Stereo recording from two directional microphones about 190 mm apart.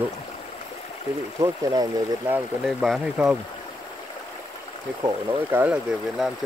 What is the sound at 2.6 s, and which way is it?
Speech, centre (ahead or behind).